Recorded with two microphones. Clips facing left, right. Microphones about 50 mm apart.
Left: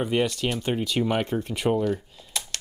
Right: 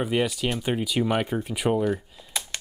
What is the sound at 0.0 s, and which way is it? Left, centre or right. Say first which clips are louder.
Speech: even; centre.